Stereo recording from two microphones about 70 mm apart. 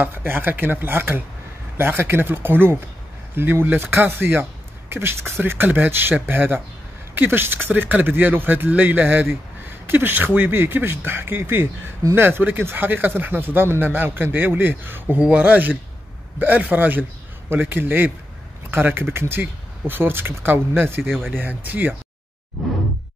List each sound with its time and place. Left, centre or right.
0.0 s speech: right
15.1 s speech: centre
21.0 s speech: centre
21.4 s speech: right
22.6 s a sound: centre